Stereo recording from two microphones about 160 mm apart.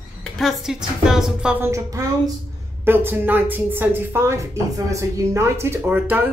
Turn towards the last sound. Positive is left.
turn(degrees=-10)  # may be behind; listen again after turning